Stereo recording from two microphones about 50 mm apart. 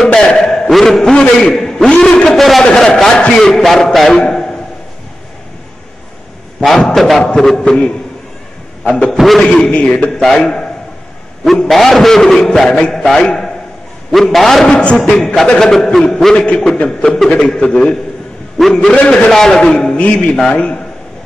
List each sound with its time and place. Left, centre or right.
0.0 s a man's voice: centre
1.1 s a man's voice: centre
2.2 s a man's voice: centre
4.3 s a sound: centre
7.0 s a man's voice: centre; by 9.1 s left
9.1 s a man's voice: centre
9.4 s a man's voice: centre
11.7 s a man's voice: centre
14.1 s a man's voice: centre
14.7 s a man's voice: left
15.0 s a man's voice: centre
16.3 s a man's voice: left
17.4 s a man's voice: centre